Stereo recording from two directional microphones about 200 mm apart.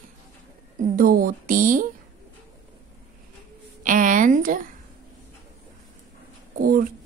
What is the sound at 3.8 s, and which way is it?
Speech, 40° right (ahead or behind).